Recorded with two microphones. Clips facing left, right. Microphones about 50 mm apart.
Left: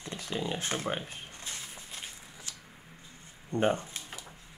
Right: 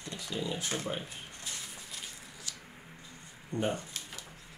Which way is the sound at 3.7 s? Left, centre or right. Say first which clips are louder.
Left 1 dB; left.